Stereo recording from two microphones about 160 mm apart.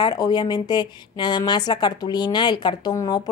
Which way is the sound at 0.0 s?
25° left (ahead or behind).